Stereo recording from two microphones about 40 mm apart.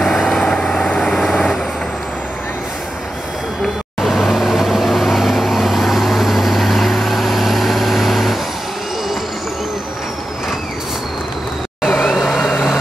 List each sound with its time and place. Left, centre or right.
0.0 s vehicle: centre
4.0 s vehicle: centre
11.8 s vehicle: centre